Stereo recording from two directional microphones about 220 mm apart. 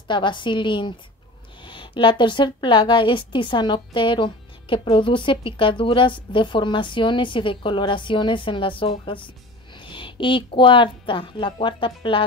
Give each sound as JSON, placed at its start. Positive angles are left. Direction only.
{"t": 0.1, "sound": "a woman's voice", "side_deg": 20}